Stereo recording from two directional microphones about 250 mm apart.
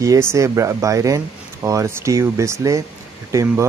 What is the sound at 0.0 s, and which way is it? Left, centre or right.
Speech, centre.